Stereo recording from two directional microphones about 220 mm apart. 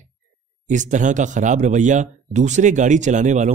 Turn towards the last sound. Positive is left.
turn(degrees=-35)  # may be behind; listen again after turning